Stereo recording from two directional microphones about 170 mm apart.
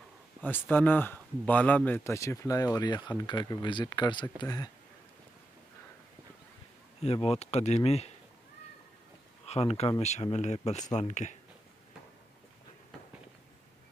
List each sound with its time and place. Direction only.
0.4 s speech: 10° left (ahead or behind)
7.0 s speech: 40° left (ahead or behind)
9.5 s speech: 35° left (ahead or behind)